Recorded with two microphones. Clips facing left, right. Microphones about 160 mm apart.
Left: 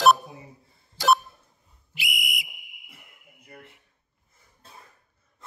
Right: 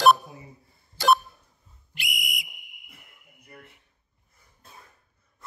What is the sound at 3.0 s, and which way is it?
Fire alarm, centre (ahead or behind).